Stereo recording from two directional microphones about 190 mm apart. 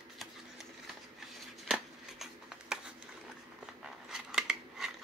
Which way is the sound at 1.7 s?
Centre (ahead or behind).